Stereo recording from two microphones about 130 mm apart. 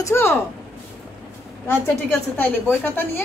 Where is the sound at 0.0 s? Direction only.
20° left (ahead or behind).